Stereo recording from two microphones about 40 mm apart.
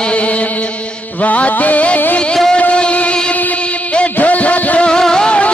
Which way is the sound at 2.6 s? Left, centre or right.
Left.